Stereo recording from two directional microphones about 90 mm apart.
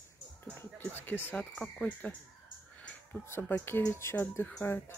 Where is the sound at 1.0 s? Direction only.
25° left (ahead or behind).